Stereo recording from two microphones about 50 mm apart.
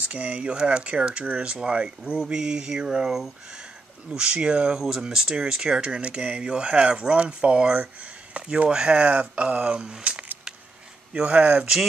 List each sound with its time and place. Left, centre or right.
0.0 s speech: right
4.1 s speech: centre